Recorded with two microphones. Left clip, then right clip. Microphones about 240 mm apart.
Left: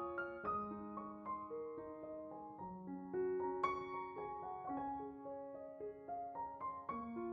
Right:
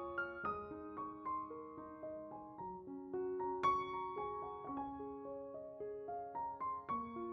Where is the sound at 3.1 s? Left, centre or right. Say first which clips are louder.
Left 1 dB; centre.